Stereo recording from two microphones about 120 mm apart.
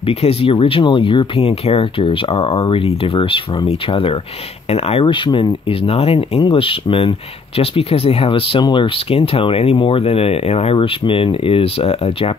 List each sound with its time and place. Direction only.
0.0 s speech: 55° left (ahead or behind)
4.6 s speech: 60° left (ahead or behind)